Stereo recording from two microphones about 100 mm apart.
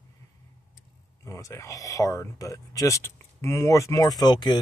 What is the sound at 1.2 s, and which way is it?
Speech, 30° left (ahead or behind).